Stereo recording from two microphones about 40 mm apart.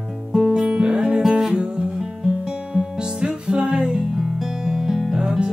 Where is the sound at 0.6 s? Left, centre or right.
Right.